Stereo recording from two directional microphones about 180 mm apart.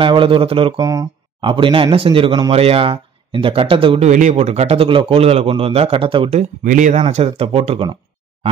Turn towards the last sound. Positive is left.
turn(degrees=-30)  # may be behind; listen again after turning